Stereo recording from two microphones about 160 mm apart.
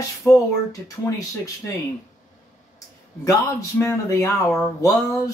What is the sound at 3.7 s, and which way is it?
Speech, 15° left (ahead or behind).